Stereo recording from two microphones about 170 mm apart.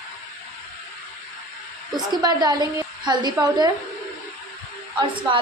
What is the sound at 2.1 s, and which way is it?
A woman's voice, 20° right (ahead or behind).